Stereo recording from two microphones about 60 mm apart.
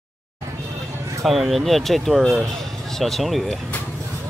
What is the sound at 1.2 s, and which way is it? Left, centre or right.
Speech, centre.